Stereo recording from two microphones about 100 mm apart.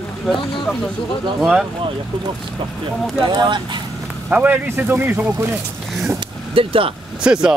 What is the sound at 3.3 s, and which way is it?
Speech, 45° right (ahead or behind).